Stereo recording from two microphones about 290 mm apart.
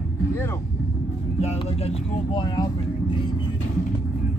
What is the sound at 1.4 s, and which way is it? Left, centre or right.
Speech, left.